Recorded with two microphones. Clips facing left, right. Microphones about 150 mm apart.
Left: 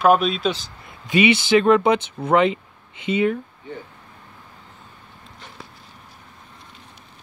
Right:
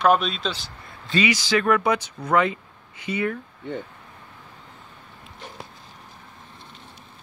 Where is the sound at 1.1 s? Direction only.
20° left (ahead or behind).